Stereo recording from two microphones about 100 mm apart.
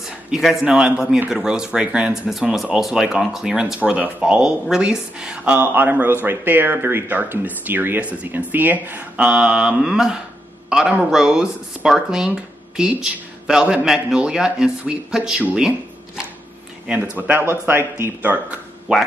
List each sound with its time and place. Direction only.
0.3 s speech: 5° right (ahead or behind)
16.8 s speech: 10° right (ahead or behind)
18.9 s speech: 10° right (ahead or behind)